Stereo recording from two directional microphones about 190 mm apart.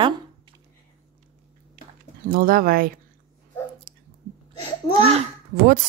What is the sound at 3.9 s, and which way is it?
Chewing, 50° right (ahead or behind).